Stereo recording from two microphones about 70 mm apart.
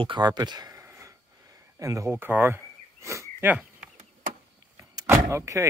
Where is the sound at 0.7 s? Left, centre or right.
Right.